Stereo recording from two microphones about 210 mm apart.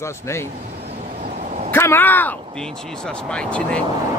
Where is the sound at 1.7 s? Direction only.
10° left (ahead or behind).